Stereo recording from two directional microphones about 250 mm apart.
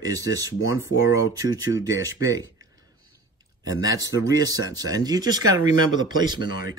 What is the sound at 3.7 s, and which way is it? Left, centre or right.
Speech, centre.